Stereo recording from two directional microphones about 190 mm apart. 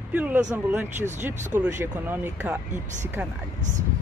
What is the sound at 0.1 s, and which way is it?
Speech, 5° right (ahead or behind).